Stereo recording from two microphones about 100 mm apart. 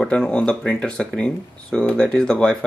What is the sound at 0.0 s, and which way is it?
Speech, 10° left (ahead or behind).